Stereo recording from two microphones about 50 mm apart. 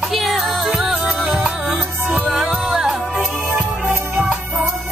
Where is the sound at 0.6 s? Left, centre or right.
Centre.